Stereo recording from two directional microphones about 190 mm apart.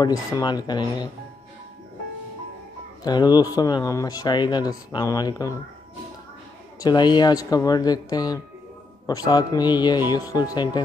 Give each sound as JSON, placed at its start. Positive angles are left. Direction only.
{"t": 0.0, "sound": "speech", "side_deg": 20}
{"t": 3.0, "sound": "speech", "side_deg": 20}
{"t": 6.8, "sound": "speech", "side_deg": 20}